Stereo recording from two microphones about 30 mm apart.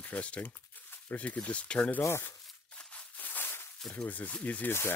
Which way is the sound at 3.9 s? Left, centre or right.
Left.